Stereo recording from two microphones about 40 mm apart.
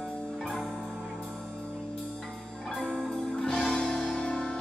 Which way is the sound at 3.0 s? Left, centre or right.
Centre.